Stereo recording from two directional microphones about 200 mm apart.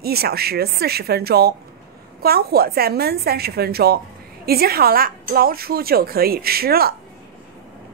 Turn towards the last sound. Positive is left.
turn(degrees=-50)  # may be behind; listen again after turning